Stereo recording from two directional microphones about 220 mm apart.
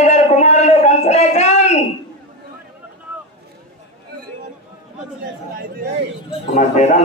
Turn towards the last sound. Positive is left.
turn(degrees=30)  # may be behind; listen again after turning